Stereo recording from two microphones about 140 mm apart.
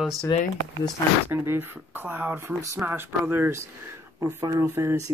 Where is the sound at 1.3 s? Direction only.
15° right (ahead or behind).